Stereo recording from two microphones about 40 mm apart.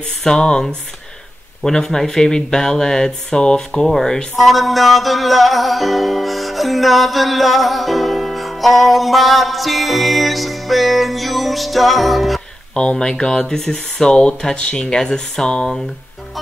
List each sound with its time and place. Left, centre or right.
0.2 s speech: centre
4.4 s music: centre
12.7 s speech: centre